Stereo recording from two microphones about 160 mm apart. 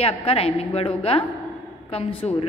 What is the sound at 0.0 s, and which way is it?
A woman's voice, 35° left (ahead or behind).